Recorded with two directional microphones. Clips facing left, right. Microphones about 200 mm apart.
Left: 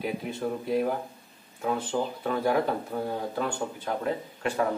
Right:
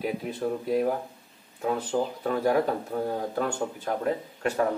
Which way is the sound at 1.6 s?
40° right (ahead or behind).